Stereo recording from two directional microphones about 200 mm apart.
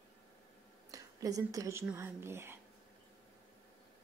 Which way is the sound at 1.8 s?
10° right (ahead or behind).